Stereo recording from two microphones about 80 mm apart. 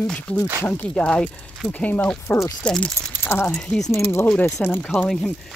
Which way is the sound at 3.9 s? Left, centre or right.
Left.